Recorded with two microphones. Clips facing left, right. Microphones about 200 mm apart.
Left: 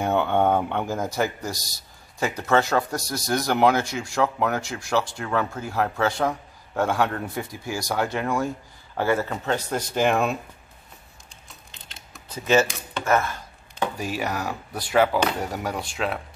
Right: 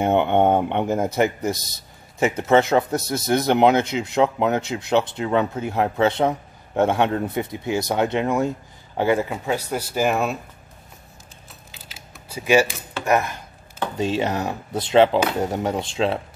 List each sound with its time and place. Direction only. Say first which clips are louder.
0.0 s speech: right 4 dB; 20° right (ahead or behind); by 10.3 s 5° right (ahead or behind)
11.7 s typing: right 2 dB; 5° right (ahead or behind)
12.6 s speech: right 1 dB; centre (ahead or behind)
13.0 s speech: right 2 dB; 15° right (ahead or behind)